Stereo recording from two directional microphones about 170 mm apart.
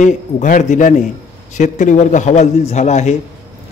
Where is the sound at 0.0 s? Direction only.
50° left (ahead or behind).